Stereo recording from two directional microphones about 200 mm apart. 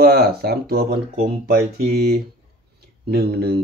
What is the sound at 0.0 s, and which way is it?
Speech, 50° right (ahead or behind).